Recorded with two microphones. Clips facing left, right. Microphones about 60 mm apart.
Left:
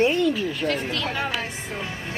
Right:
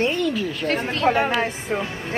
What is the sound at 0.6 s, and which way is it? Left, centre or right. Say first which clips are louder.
A woman's voice: right 9 dB; right.